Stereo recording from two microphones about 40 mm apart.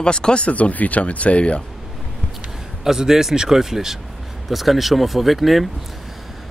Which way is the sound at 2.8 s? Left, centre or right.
Centre.